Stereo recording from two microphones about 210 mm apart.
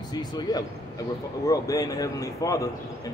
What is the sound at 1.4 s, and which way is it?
A man's voice, 15° left (ahead or behind).